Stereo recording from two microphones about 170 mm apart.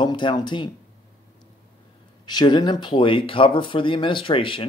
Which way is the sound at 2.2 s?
25° left (ahead or behind).